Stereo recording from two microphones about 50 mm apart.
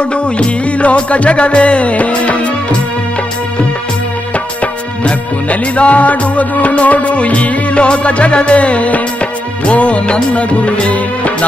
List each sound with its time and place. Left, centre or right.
0.4 s music: left
5.0 s music: left